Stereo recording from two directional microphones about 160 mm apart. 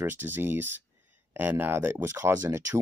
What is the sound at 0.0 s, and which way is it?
Speech, 15° right (ahead or behind).